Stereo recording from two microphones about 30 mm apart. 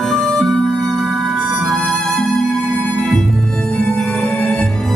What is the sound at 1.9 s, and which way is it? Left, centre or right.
Music, centre.